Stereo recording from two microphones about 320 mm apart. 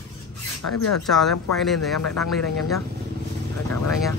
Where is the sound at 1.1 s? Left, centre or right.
Centre.